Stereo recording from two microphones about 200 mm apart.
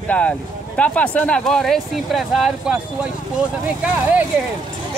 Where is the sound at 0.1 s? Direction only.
5° left (ahead or behind).